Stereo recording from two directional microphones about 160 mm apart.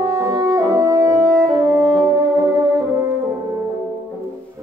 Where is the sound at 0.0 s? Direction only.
15° right (ahead or behind).